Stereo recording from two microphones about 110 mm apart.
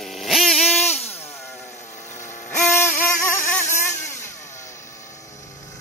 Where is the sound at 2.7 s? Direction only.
20° left (ahead or behind).